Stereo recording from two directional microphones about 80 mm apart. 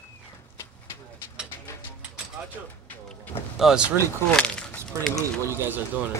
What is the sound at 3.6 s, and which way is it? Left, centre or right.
Speech, centre.